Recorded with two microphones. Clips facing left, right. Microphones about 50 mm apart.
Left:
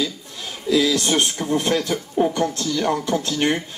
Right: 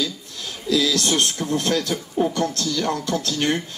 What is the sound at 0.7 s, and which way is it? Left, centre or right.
A man's voice, left.